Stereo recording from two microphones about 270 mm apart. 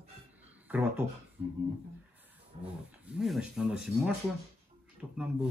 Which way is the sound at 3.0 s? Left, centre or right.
Centre.